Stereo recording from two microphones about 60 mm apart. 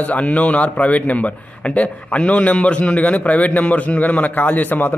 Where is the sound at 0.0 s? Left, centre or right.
Left.